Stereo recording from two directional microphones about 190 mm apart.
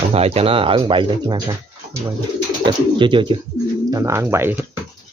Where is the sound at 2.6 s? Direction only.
25° right (ahead or behind).